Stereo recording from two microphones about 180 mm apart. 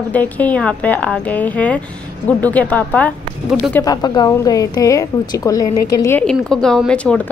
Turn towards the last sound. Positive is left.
turn(degrees=5)  # may be behind; listen again after turning